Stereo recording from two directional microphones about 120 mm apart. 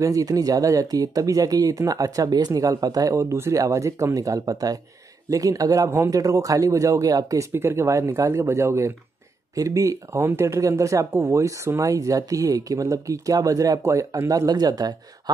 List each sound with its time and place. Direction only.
0.0 s speech: 30° right (ahead or behind)